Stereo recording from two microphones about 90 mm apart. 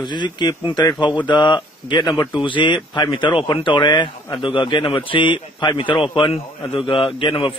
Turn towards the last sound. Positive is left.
turn(degrees=70)  # may be behind; listen again after turning